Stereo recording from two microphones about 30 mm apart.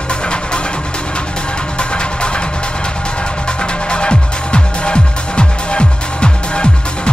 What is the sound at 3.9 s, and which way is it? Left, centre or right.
Music, left.